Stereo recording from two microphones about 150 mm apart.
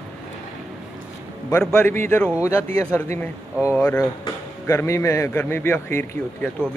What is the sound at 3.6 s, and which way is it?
A man's voice, 15° left (ahead or behind).